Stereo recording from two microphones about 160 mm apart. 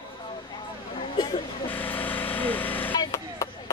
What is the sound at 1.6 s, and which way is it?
Vehicle, 10° left (ahead or behind).